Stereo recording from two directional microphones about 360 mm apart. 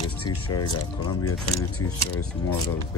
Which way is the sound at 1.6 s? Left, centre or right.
Left.